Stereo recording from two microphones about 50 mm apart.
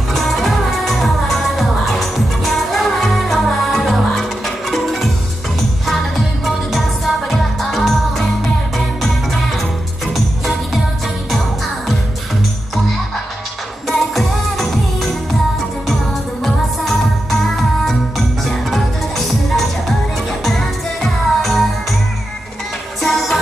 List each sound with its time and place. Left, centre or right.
0.1 s music: centre
7.2 s music: centre
10.1 s music: centre
13.8 s music: centre
16.4 s music: centre
23.0 s music: centre